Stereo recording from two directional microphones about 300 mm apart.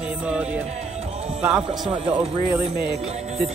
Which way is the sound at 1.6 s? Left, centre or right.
Centre.